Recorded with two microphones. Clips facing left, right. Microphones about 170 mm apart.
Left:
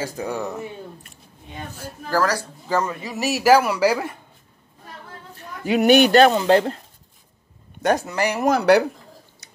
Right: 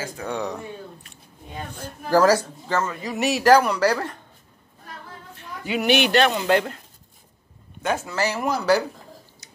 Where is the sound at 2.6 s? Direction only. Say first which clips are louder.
Left 2 dB; 15° left (ahead or behind).